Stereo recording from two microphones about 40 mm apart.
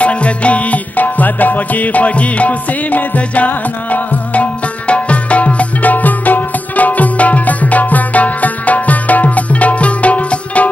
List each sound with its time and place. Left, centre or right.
0.0 s music: left